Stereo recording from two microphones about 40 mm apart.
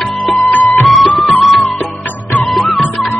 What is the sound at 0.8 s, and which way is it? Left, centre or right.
Music, centre.